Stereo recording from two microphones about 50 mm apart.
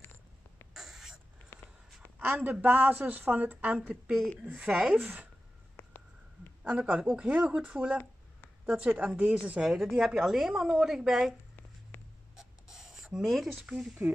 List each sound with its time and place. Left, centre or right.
0.7 s owl: centre
1.5 s a sound: left
2.1 s a woman's voice: right
5.8 s a sound: left
6.6 s a woman's voice: right
7.4 s speech: right
7.7 s a woman's voice: centre
9.9 s a woman's voice: centre
11.9 s writing: left
12.4 s a sound: centre
13.7 s a woman's voice: centre